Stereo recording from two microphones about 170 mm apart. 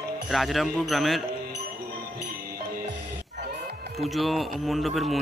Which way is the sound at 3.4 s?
70° right (ahead or behind).